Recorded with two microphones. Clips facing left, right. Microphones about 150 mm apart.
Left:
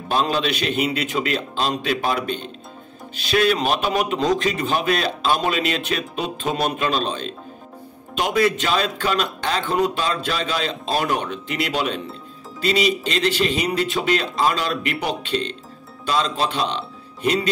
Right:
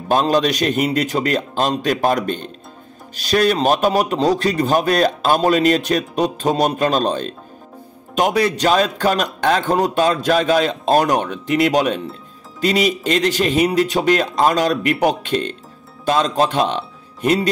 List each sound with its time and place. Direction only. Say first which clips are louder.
0.1 s a man's voice: right 5 dB; 45° right (ahead or behind)